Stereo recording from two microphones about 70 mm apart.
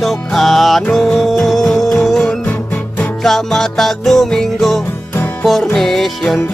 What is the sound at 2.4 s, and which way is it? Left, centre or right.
Music, left.